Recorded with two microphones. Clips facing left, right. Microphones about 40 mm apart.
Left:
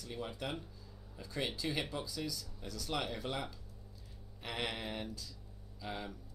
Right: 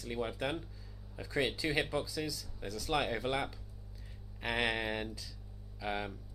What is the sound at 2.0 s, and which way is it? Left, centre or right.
Speech, centre.